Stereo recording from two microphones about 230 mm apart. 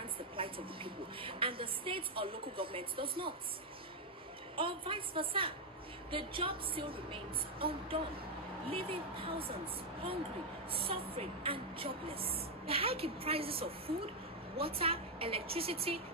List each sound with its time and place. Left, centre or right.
0.4 s speech: right
4.6 s speech: right
10.7 s speech: right